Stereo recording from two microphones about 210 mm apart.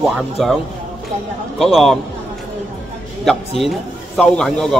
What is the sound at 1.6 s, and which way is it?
Speech, centre (ahead or behind).